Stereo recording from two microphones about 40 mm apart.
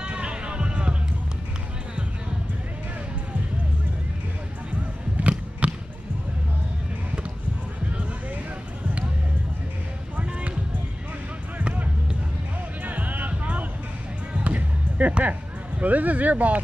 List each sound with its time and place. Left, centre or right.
0.0 s music: right
5.6 s basketball bounce: right
10.1 s music: right
12.8 s music: right
15.8 s speech: right